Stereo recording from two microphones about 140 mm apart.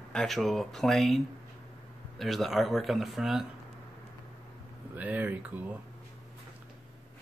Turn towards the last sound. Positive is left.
turn(degrees=-10)  # may be behind; listen again after turning